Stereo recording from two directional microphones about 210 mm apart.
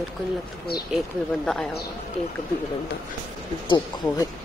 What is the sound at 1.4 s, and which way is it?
Speech, 5° left (ahead or behind).